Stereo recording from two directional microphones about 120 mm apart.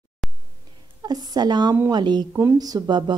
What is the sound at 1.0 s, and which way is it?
A woman's voice, 35° right (ahead or behind).